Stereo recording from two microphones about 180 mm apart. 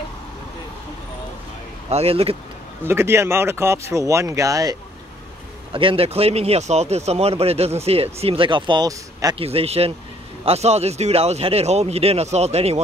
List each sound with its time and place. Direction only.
1.9 s speech: 35° right (ahead or behind)
2.8 s speech: 15° right (ahead or behind)
5.7 s speech: 30° right (ahead or behind)
9.4 s speech: 35° right (ahead or behind)